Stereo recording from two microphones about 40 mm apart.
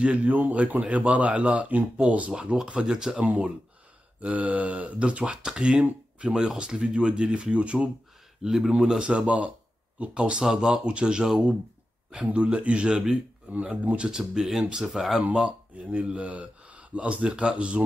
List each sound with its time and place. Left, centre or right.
0.0 s speech: right
2.3 s speech: right
4.2 s speech: right
8.4 s speech: centre
8.7 s speech: centre
9.1 s speech: right
10.3 s speech: centre
13.5 s speech: right
14.1 s speech: centre
15.7 s speech: right